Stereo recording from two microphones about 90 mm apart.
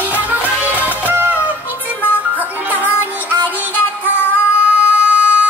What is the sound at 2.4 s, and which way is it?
Music, 20° right (ahead or behind).